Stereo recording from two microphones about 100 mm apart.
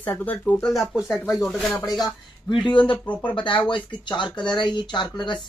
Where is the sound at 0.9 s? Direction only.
5° right (ahead or behind).